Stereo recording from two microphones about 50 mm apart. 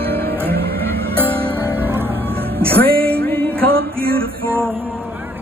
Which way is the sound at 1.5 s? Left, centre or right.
Right.